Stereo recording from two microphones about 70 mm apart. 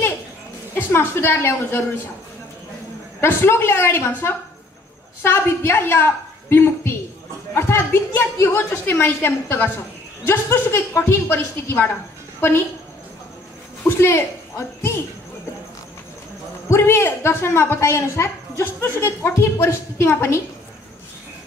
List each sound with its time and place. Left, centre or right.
0.7 s a woman's voice: left
3.2 s a woman's voice: left
13.8 s a woman's voice: left
16.7 s a woman's voice: left